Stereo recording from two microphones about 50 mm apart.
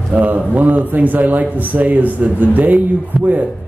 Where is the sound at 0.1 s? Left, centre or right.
Right.